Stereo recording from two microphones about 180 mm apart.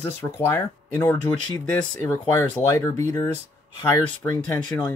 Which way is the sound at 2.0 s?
15° left (ahead or behind).